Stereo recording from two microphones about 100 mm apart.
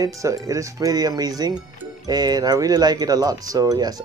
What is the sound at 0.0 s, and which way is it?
Speech, 30° right (ahead or behind).